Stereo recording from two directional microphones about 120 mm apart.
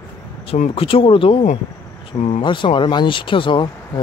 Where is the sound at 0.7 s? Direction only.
50° left (ahead or behind).